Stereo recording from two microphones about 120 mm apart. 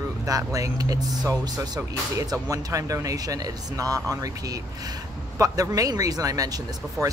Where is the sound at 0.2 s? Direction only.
30° right (ahead or behind).